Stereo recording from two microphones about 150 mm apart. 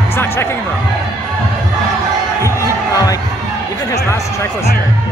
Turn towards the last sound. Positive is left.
turn(degrees=20)  # may be behind; listen again after turning